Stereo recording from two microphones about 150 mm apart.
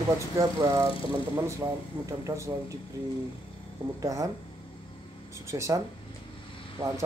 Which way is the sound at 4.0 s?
20° right (ahead or behind).